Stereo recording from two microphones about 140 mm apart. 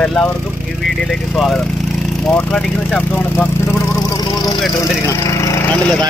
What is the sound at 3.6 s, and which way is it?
Vehicle, 25° left (ahead or behind).